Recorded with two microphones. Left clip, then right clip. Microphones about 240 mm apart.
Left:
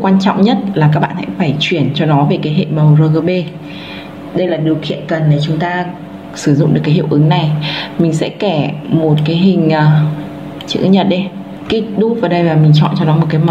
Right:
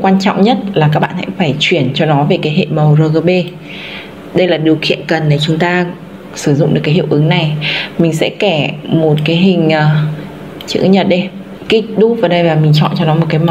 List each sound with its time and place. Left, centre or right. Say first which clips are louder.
0.0 s a woman's voice: right 2 dB; centre
4.4 s a man's voice: right 4 dB; right
6.4 s a woman's voice: right 1 dB; centre